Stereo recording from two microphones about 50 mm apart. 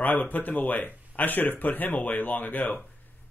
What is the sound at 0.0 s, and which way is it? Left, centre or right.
Speech, left.